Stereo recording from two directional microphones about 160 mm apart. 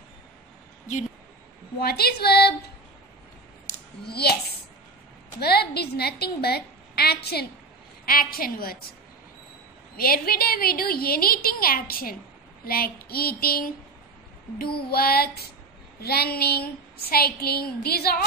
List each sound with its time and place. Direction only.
1.8 s a woman's voice: 75° left (ahead or behind)
4.0 s a woman's voice: 85° left
5.4 s a woman's voice: 85° left
8.1 s a woman's voice: 65° left (ahead or behind)
9.9 s a woman's voice: 70° left (ahead or behind)
14.9 s a woman's voice: 70° left (ahead or behind)